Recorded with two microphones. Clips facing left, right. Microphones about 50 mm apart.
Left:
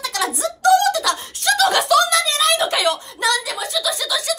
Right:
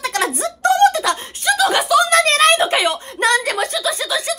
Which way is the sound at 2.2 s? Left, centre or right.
Right.